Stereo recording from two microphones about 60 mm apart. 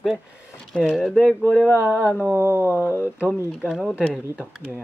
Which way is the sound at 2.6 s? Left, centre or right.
Left.